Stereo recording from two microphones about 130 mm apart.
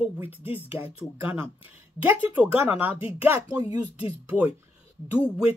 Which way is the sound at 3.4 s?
30° right (ahead or behind).